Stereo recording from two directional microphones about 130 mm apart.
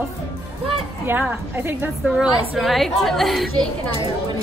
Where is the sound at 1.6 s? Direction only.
15° right (ahead or behind).